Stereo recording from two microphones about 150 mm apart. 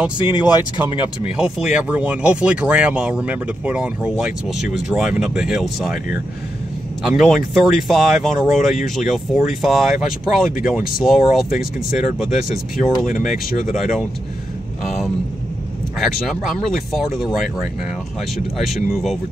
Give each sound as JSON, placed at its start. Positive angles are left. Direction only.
{"t": 0.3, "sound": "speech", "side_deg": 30}
{"t": 1.2, "sound": "speech", "side_deg": -10}
{"t": 7.0, "sound": "speech", "side_deg": 0}
{"t": 13.0, "sound": "speech", "side_deg": 60}
{"t": 13.7, "sound": "speech", "side_deg": -5}
{"t": 16.0, "sound": "speech", "side_deg": 0}
{"t": 18.9, "sound": "speech", "side_deg": 0}